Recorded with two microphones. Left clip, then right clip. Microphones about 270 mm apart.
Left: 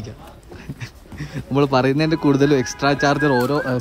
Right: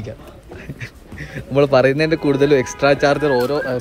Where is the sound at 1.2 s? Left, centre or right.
Centre.